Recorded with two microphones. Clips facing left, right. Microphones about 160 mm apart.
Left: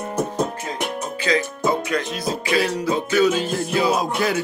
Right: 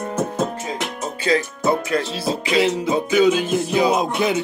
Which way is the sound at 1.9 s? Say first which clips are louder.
Right 2 dB; 30° right (ahead or behind).